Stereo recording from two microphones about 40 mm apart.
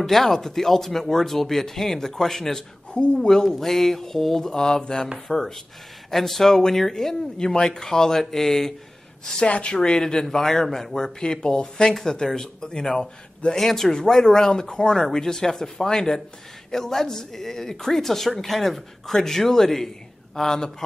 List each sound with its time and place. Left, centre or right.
0.0 s speech: centre
2.9 s speech: left
3.2 s speech: centre
9.2 s speech: left